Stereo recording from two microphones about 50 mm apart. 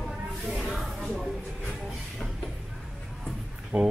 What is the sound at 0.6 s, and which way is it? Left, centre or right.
Music, centre.